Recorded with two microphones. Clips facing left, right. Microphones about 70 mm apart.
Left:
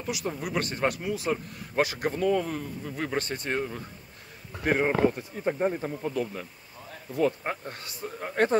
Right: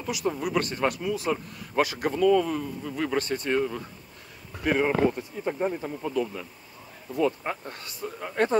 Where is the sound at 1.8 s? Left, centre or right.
Centre.